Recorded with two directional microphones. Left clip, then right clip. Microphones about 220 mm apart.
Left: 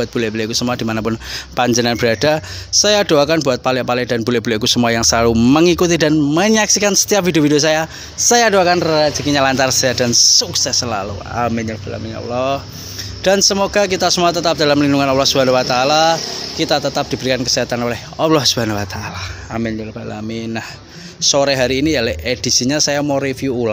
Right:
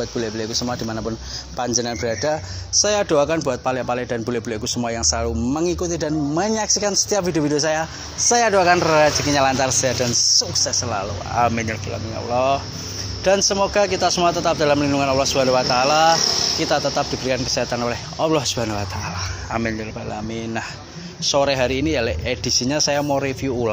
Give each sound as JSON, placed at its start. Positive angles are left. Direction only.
{"t": 0.0, "sound": "speech", "side_deg": 45}
{"t": 20.2, "sound": "speech", "side_deg": 40}